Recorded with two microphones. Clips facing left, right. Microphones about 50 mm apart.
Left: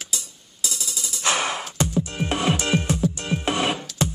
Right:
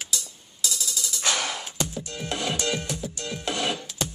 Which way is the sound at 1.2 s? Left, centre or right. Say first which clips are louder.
Left 5 dB; left.